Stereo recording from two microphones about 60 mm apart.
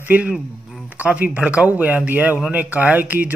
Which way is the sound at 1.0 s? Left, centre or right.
Right.